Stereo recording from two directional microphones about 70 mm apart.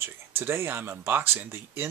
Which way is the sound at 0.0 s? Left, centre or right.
Right.